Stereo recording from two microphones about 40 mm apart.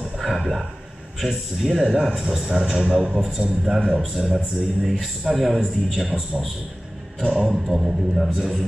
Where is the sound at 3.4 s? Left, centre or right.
Centre.